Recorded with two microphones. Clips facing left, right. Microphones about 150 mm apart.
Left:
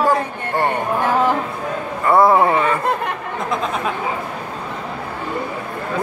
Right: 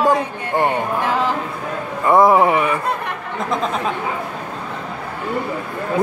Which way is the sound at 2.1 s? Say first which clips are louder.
Right 1 dB; 15° right (ahead or behind).